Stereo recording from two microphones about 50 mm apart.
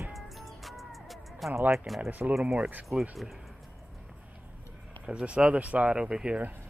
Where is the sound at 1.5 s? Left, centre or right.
Right.